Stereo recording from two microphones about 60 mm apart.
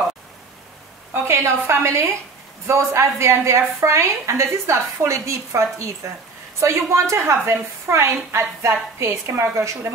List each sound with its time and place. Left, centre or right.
1.1 s a woman's voice: right